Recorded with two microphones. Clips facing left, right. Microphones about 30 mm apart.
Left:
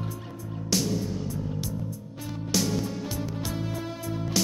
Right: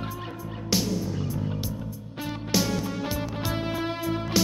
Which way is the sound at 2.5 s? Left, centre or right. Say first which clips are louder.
Right 1 dB; right.